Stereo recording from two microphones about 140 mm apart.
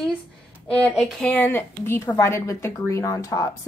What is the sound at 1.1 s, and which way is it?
A woman's voice, 10° left (ahead or behind).